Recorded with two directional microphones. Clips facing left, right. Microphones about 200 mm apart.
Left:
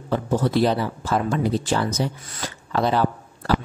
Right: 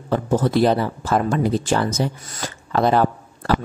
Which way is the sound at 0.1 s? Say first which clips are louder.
Right 2 dB; 50° right (ahead or behind).